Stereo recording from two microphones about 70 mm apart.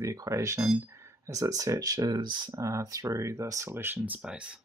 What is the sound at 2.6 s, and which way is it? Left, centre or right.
Speech, right.